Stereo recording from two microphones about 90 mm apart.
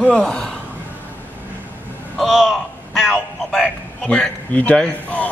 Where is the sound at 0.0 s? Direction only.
10° left (ahead or behind).